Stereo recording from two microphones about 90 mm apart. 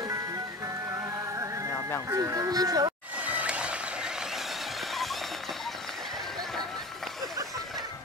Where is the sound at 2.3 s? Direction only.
45° right (ahead or behind).